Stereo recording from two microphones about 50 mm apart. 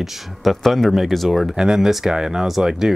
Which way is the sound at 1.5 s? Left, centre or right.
Centre.